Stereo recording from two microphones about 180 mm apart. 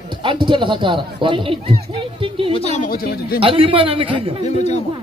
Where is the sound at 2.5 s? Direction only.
35° left (ahead or behind).